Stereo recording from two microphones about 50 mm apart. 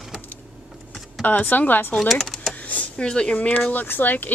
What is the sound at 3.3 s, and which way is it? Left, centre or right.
Speech, left.